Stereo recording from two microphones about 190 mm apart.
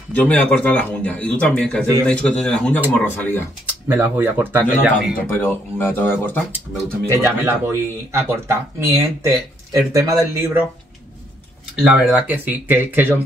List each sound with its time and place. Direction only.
0.1 s speech: 10° left (ahead or behind)
3.6 s speech: 10° right (ahead or behind)
5.4 s speech: 10° left (ahead or behind)
7.1 s speech: 15° right (ahead or behind)
11.7 s speech: 5° right (ahead or behind)